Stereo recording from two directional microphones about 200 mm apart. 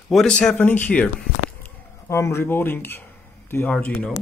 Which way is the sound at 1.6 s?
15° left (ahead or behind).